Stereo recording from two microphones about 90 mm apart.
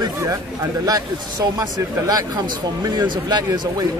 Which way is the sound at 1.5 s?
45° right (ahead or behind).